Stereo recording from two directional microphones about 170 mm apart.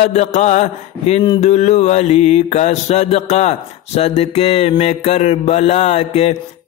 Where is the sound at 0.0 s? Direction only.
40° left (ahead or behind).